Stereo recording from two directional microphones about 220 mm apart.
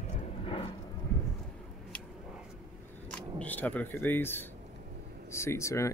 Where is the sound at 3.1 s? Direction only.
5° left (ahead or behind).